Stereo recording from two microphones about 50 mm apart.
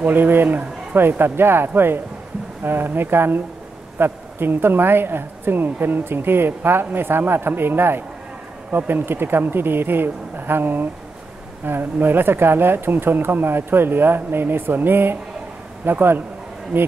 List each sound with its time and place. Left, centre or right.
0.0 s a woman's voice: right